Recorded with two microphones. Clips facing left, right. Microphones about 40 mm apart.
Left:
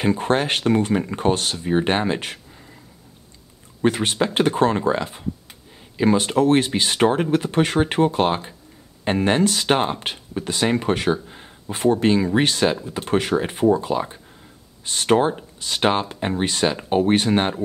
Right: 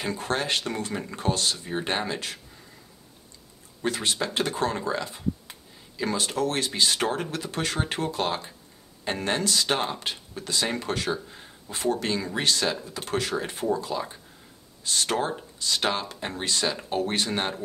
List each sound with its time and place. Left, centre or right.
0.0 s speech: left
3.8 s speech: left